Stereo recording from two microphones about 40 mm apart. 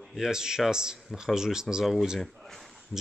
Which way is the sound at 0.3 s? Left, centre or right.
Centre.